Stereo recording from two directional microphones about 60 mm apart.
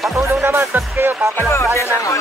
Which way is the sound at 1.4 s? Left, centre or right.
Left.